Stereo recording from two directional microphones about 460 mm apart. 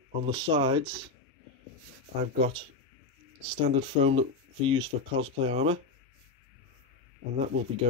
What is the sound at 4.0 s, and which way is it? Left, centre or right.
Speech, centre.